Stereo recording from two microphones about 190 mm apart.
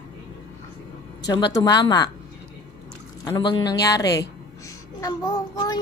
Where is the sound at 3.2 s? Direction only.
25° left (ahead or behind).